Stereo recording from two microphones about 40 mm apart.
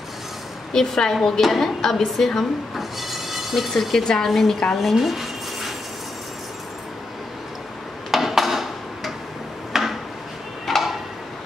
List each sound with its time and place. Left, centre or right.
0.7 s a woman's voice: centre
2.7 s train: centre
3.7 s a woman's voice: centre
4.7 s a sound: centre
8.1 s a sound: centre
10.7 s tick-tock: centre